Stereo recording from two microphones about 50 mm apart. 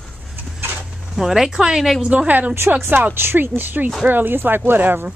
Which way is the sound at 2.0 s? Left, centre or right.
Right.